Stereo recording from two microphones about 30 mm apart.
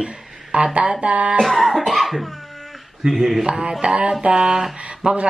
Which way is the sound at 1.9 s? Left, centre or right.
Centre.